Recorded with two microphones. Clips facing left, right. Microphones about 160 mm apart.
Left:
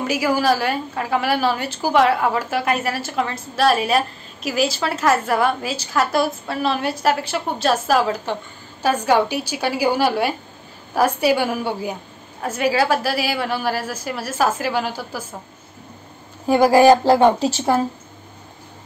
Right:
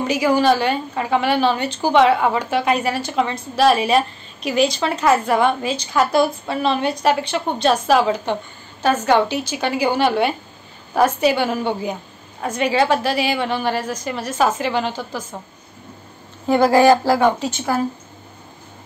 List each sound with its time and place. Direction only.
0.0 s a woman's voice: 5° left (ahead or behind)
16.4 s a woman's voice: 10° left (ahead or behind)
17.4 s speech: 30° left (ahead or behind)